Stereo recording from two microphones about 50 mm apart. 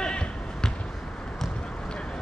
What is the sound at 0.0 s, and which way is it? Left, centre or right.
Basketball bounce, centre.